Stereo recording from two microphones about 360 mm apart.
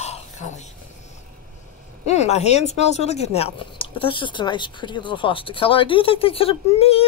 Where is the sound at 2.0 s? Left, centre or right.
Centre.